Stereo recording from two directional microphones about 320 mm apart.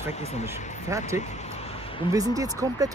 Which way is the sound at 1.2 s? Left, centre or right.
Left.